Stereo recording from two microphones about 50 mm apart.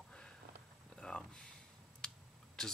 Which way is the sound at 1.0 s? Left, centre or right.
Centre.